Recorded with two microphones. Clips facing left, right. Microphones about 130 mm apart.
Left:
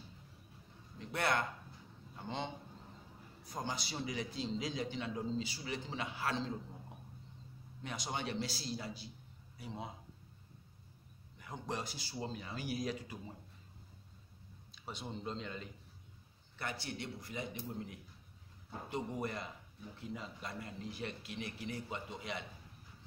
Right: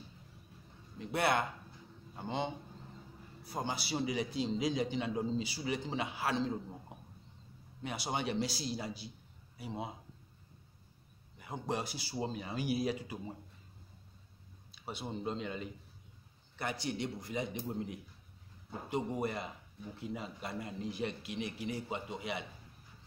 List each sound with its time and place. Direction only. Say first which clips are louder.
0.9 s a man's voice: right 4 dB; 10° right (ahead or behind)
7.8 s a man's voice: right 4 dB; 10° right (ahead or behind)
11.3 s a man's voice: right 4 dB; 10° right (ahead or behind)
14.9 s a man's voice: right 4 dB; 10° right (ahead or behind)